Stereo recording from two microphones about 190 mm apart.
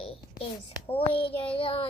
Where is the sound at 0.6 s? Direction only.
30° left (ahead or behind).